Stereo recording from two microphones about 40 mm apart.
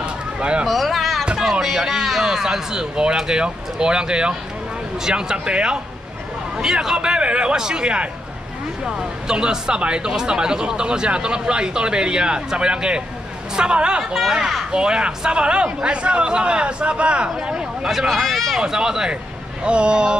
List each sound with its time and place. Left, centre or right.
0.0 s a sound: right
0.7 s a sound: centre
1.4 s speech: centre
7.0 s speech: right
14.1 s speech: centre
14.7 s speech: right
17.8 s speech: centre
18.6 s speech: centre